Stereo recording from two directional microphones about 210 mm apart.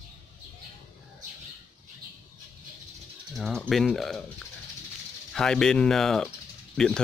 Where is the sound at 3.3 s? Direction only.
Centre (ahead or behind).